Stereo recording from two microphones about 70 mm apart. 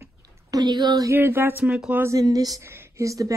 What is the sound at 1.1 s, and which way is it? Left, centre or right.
Speech, right.